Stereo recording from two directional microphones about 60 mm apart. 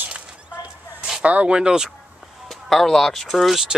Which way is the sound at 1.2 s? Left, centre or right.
Right.